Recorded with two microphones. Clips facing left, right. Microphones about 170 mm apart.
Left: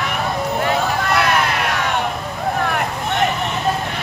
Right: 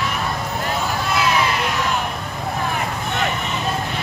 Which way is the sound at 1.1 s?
65° left (ahead or behind).